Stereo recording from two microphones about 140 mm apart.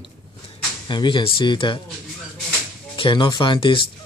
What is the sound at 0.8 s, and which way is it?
Speech, 35° left (ahead or behind).